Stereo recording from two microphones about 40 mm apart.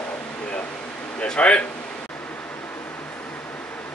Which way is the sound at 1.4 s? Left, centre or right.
Left.